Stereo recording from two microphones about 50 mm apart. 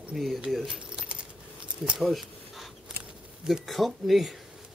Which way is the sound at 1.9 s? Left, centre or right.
Centre.